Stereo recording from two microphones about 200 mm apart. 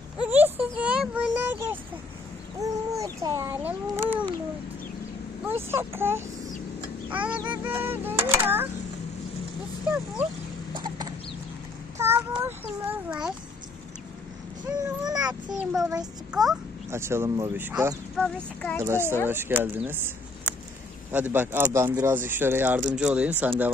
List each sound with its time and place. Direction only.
0.2 s a sound: 10° right (ahead or behind)
2.6 s speech: 15° right (ahead or behind)
5.4 s speech: 10° right (ahead or behind)
9.8 s speech: 10° right (ahead or behind)
10.7 s chicken: 20° right (ahead or behind)
12.0 s child singing: 10° right (ahead or behind)
12.4 s a sound: 5° right (ahead or behind)
15.0 s a sound: 20° right (ahead or behind)
15.5 s a child's voice: centre (ahead or behind)
18.1 s speech: 5° left (ahead or behind)
18.8 s speech: 10° right (ahead or behind)